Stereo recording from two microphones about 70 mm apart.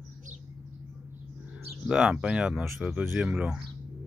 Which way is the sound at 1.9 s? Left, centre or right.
Centre.